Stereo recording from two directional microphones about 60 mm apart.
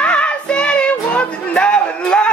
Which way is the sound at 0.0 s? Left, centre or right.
Centre.